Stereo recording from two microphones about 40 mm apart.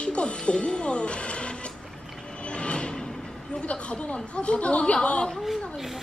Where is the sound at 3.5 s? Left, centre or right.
Left.